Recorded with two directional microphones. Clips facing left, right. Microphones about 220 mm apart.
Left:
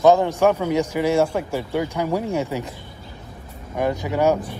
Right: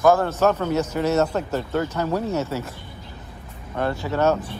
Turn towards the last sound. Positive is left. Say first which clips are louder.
# left 1 dB
turn(degrees=15)  # may be behind; listen again after turning